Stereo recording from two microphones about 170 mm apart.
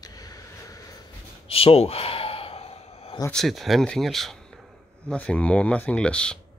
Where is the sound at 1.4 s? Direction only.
35° left (ahead or behind).